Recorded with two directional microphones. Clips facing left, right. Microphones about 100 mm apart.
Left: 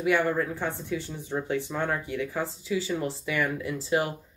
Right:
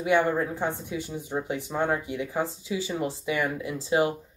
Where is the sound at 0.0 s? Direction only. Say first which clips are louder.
Right 1 dB; 20° right (ahead or behind).